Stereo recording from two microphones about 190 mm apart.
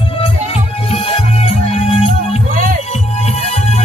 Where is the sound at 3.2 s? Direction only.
35° left (ahead or behind).